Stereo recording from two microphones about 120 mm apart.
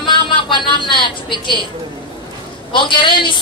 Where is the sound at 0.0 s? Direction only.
40° left (ahead or behind).